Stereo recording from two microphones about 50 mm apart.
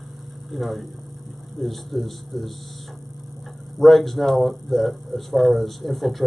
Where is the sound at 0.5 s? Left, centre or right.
Centre.